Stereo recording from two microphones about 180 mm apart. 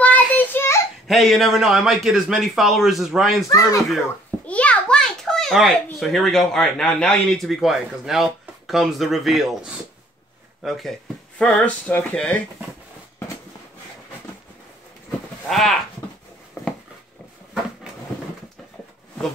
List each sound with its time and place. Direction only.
0.0 s child singing: 10° left (ahead or behind)
1.0 s speech: centre (ahead or behind)
3.4 s speech: 15° left (ahead or behind)
4.5 s a sound: 5° left (ahead or behind)
5.9 s speech: centre (ahead or behind)
15.0 s sheep: centre (ahead or behind)
16.6 s a sound: 15° left (ahead or behind)